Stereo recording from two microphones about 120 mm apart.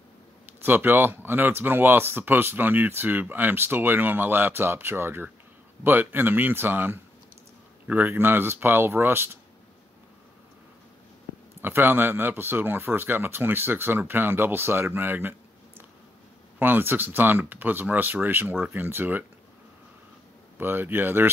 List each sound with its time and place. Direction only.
0.5 s speech: 15° right (ahead or behind)
11.6 s speech: 20° right (ahead or behind)
16.5 s speech: 15° right (ahead or behind)
20.5 s speech: 15° right (ahead or behind)